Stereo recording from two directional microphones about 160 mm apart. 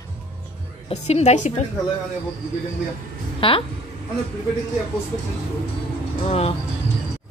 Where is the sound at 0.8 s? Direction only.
40° left (ahead or behind).